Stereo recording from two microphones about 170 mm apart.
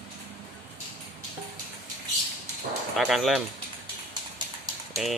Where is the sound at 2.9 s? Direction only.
Centre (ahead or behind).